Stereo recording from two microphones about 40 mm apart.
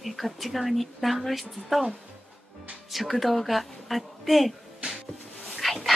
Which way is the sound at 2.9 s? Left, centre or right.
Centre.